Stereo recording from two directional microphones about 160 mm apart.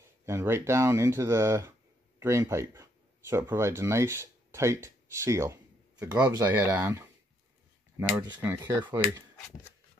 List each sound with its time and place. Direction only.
0.2 s speech: 15° right (ahead or behind)
8.2 s speech: 20° right (ahead or behind)